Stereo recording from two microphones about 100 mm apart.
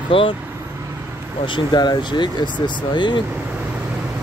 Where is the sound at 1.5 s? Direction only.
45° left (ahead or behind).